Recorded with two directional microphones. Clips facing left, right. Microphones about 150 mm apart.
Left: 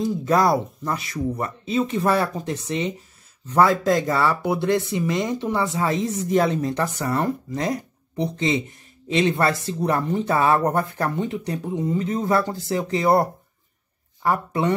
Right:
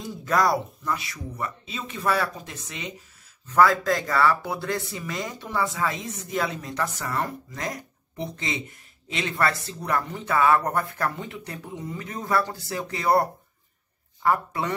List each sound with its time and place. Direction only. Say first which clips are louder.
0.2 s speech: left 2 dB; 25° left (ahead or behind)
0.8 s speech: left 5 dB; 40° left (ahead or behind); by 14.7 s 25° left (ahead or behind)